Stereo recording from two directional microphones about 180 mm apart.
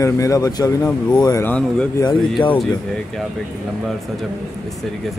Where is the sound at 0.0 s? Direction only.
20° left (ahead or behind).